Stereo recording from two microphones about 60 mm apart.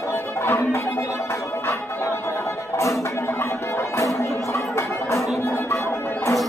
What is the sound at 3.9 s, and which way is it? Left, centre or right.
Music, left.